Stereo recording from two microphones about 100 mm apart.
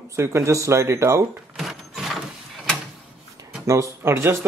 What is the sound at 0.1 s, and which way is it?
Speech, 30° right (ahead or behind).